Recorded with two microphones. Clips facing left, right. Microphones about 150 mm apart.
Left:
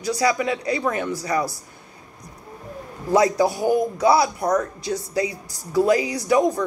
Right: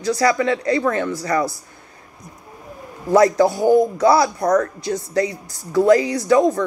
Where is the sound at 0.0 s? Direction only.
15° left (ahead or behind).